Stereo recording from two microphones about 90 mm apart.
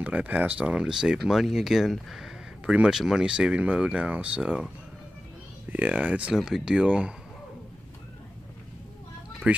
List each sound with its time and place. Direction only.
0.0 s speech: 15° right (ahead or behind)
5.7 s speech: 15° right (ahead or behind)
6.3 s speech: 5° right (ahead or behind)
9.5 s speech: 15° right (ahead or behind)